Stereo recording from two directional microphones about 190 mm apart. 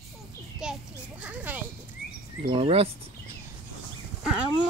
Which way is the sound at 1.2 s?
5° right (ahead or behind).